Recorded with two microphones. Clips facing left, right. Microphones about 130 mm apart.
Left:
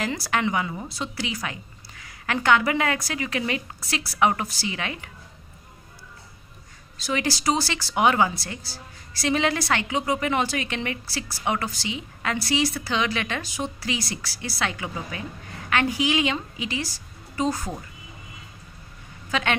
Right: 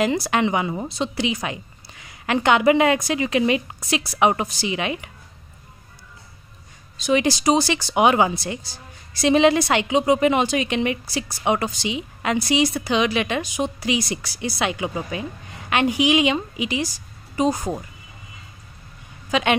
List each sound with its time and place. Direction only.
0.0 s speech: 20° right (ahead or behind)
7.0 s a woman's voice: 20° right (ahead or behind)
19.3 s a woman's voice: 15° right (ahead or behind)